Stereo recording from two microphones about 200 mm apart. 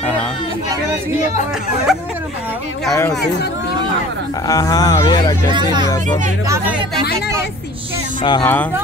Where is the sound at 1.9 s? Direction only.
Centre (ahead or behind).